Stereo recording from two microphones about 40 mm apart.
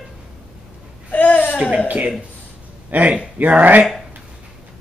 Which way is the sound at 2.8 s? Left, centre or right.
Right.